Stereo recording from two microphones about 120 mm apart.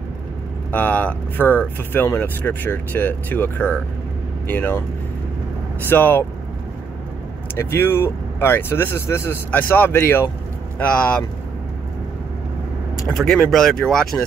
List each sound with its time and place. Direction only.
0.7 s speech: 15° left (ahead or behind)
5.9 s speech: 20° left (ahead or behind)
7.5 s speech: 20° left (ahead or behind)
13.1 s speech: centre (ahead or behind)